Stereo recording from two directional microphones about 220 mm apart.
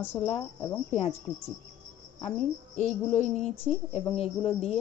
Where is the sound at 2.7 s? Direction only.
35° left (ahead or behind).